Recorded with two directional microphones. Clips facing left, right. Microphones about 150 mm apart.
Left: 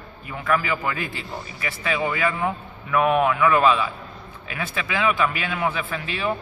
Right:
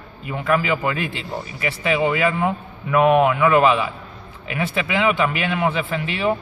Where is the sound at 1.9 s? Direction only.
15° right (ahead or behind).